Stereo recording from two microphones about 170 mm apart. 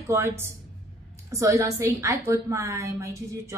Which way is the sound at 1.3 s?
20° right (ahead or behind).